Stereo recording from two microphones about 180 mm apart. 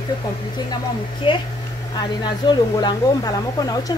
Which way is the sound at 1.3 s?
30° left (ahead or behind).